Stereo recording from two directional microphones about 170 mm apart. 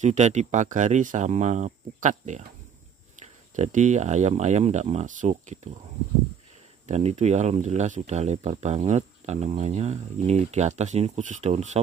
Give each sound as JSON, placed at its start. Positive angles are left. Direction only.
{"t": 0.0, "sound": "speech", "side_deg": -45}
{"t": 3.5, "sound": "speech", "side_deg": -45}
{"t": 6.9, "sound": "speech", "side_deg": -45}